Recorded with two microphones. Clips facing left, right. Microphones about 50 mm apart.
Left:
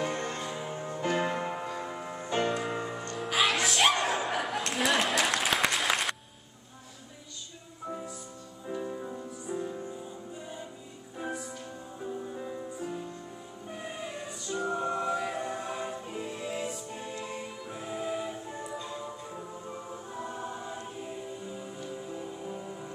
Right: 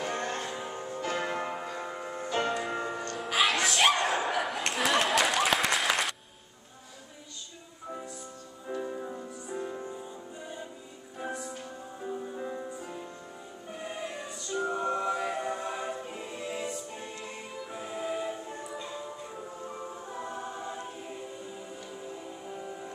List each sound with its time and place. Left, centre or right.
0.2 s music: right
0.6 s music: centre
8.6 s music: centre
11.1 s music: centre
20.1 s choir: centre